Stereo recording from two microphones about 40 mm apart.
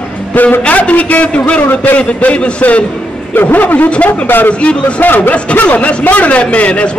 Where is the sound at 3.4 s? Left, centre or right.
Left.